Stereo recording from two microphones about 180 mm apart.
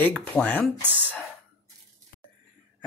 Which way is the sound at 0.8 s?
10° right (ahead or behind).